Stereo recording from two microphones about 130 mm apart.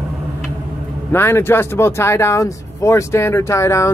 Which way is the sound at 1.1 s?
20° left (ahead or behind).